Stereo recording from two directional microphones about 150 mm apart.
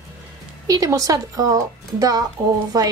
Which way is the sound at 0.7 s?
25° right (ahead or behind).